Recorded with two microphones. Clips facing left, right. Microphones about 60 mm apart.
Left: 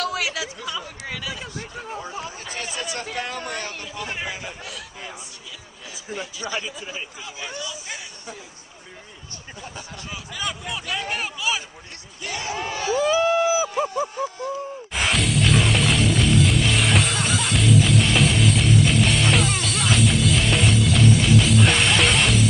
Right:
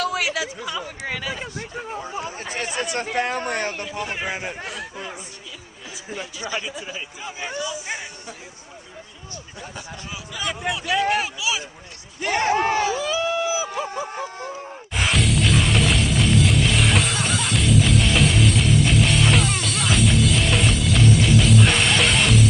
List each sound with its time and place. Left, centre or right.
0.0 s speech: centre
1.2 s speech: right
1.8 s speech: centre
2.2 s speech: right
4.0 s speech: centre
4.3 s speech: right
6.4 s speech: centre
10.7 s a man's voice: centre
12.2 s speech: right
13.4 s a sound: centre
13.8 s speech: right
14.9 s music: centre